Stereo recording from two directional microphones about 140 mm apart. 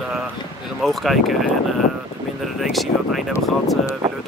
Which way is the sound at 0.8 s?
Centre (ahead or behind).